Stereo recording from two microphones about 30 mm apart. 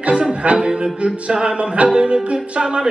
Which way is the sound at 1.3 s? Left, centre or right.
Right.